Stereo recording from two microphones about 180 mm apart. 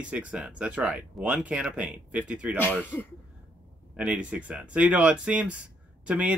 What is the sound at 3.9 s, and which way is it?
Speech, 5° right (ahead or behind).